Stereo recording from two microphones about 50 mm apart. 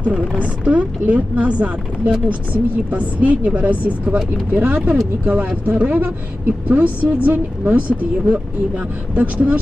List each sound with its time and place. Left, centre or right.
0.0 s a woman's voice: right